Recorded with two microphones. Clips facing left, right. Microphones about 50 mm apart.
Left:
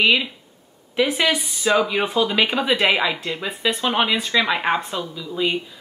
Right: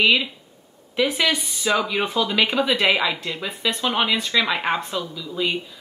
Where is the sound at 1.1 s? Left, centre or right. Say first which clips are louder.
Left 1 dB; left.